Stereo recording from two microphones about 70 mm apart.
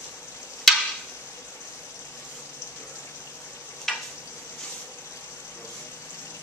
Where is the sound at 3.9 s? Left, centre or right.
Centre.